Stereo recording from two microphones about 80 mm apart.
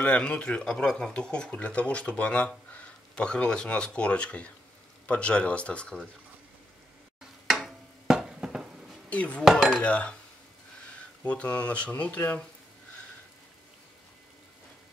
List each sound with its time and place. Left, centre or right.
0.0 s speech: centre
7.4 s a sound: centre
9.1 s speech: centre
9.4 s speech: centre
9.8 s speech: centre
11.2 s speech: centre